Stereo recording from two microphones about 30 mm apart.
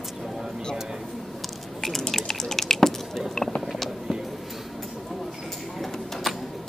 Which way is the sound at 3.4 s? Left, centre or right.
Centre.